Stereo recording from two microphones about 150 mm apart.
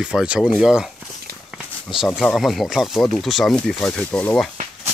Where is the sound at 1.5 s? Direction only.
5° right (ahead or behind).